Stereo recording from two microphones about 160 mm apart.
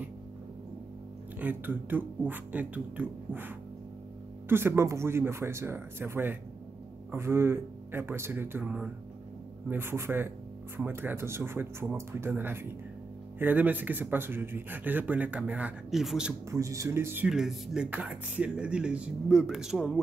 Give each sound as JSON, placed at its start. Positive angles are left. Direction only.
{"t": 1.4, "sound": "speech", "side_deg": -10}
{"t": 16.4, "sound": "speech", "side_deg": -20}
{"t": 17.3, "sound": "speech", "side_deg": 0}